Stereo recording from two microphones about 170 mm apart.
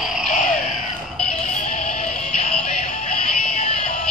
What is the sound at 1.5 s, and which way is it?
Music, 45° left (ahead or behind).